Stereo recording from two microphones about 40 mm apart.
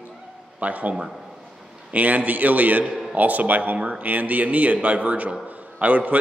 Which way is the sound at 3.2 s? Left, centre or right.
Right.